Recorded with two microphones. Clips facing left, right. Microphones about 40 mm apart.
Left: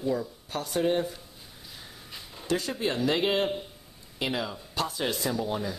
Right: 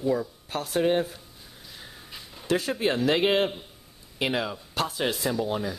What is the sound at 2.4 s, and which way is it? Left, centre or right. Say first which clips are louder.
Speech: right 3 dB; centre.